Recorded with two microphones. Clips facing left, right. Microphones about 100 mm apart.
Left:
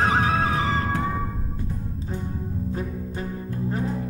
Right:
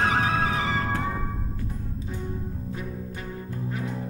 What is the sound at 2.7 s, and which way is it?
Music, 30° left (ahead or behind).